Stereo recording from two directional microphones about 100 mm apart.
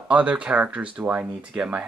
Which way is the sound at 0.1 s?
10° right (ahead or behind).